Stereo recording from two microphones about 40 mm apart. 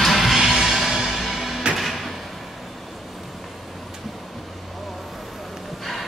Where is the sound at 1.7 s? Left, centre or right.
Right.